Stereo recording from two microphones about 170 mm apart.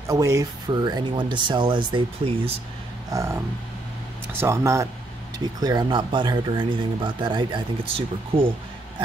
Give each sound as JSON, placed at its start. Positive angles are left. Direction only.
{"t": 0.1, "sound": "speech", "side_deg": -20}
{"t": 3.1, "sound": "speech", "side_deg": -20}